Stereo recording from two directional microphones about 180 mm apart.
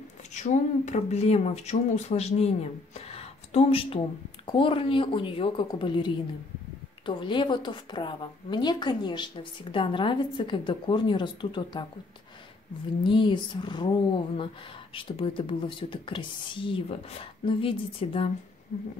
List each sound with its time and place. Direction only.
0.3 s a woman's voice: 40° left (ahead or behind); by 11.8 s 25° left (ahead or behind)
13.0 s a woman's voice: 25° left (ahead or behind)